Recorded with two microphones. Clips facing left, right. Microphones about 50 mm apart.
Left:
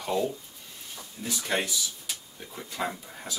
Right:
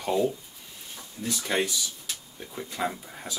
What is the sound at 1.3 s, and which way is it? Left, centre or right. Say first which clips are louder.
Speech: right 2 dB; centre.